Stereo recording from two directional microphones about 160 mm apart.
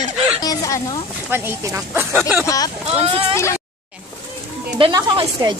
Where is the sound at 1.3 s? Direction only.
15° right (ahead or behind).